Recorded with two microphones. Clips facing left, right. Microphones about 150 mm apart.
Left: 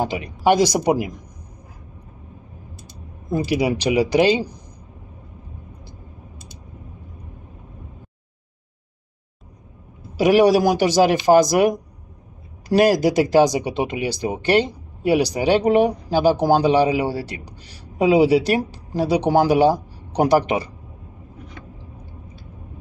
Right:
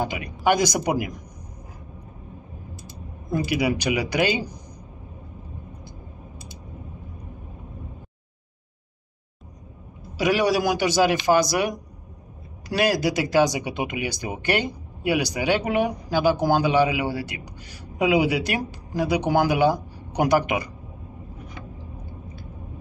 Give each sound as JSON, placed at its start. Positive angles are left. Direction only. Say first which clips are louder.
{"t": 0.0, "sound": "speech", "louder": "left 4 dB", "side_deg": 30}
{"t": 3.3, "sound": "speech", "louder": "left 3 dB", "side_deg": 35}
{"t": 10.1, "sound": "speech", "louder": "left 7 dB", "side_deg": 40}